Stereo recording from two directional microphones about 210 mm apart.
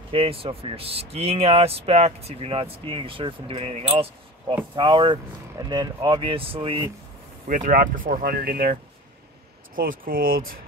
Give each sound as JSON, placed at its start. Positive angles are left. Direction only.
{"t": 0.1, "sound": "speech", "side_deg": -25}
{"t": 7.4, "sound": "speech", "side_deg": -40}
{"t": 9.8, "sound": "speech", "side_deg": -40}